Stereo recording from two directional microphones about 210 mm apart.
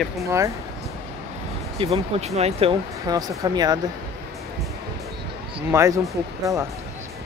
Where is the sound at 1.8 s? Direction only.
30° right (ahead or behind).